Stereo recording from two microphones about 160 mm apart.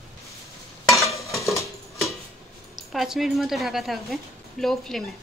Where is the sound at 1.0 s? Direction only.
20° left (ahead or behind).